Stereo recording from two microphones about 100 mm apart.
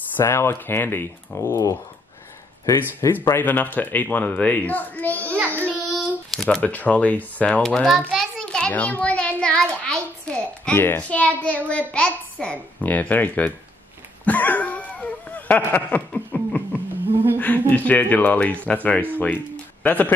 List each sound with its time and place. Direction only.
0.1 s speech: 25° left (ahead or behind)
3.3 s speech: 20° left (ahead or behind)
5.2 s child singing: 20° right (ahead or behind)
5.9 s speech: 5° left (ahead or behind)
8.1 s a sound: centre (ahead or behind)
10.2 s speech: 10° left (ahead or behind)
14.2 s a sound: 15° left (ahead or behind)
17.4 s speech: 15° left (ahead or behind)